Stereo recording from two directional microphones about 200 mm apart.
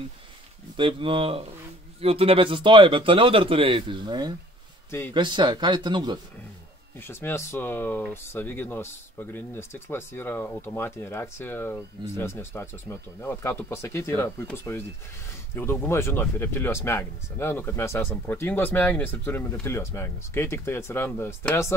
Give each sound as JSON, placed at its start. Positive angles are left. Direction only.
{"t": 0.7, "sound": "speech", "side_deg": -25}
{"t": 7.0, "sound": "speech", "side_deg": 10}